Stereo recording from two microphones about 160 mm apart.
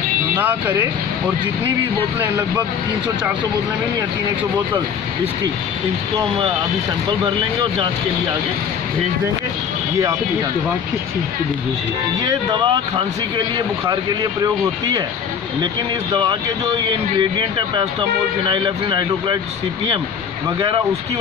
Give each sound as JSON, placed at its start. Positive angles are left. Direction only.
{"t": 0.4, "sound": "speech", "side_deg": -10}
{"t": 2.1, "sound": "speech", "side_deg": -20}
{"t": 12.3, "sound": "speech", "side_deg": -30}
{"t": 13.8, "sound": "speech", "side_deg": -25}